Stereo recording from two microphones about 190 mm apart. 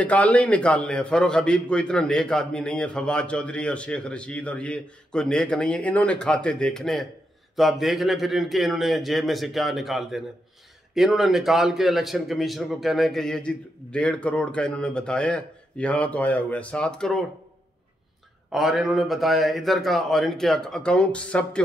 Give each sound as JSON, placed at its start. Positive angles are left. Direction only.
{"t": 0.0, "sound": "a man's voice", "side_deg": 5}
{"t": 18.5, "sound": "a man's voice", "side_deg": 0}